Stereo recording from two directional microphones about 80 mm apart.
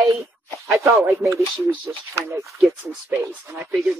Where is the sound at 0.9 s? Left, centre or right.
Right.